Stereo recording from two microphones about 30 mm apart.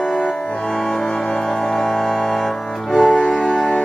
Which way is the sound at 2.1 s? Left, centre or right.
Centre.